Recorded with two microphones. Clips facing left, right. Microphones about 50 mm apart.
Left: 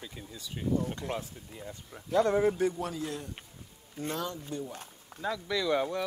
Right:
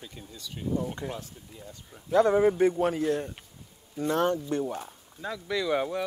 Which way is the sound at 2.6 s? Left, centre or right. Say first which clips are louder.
Right 7 dB; right.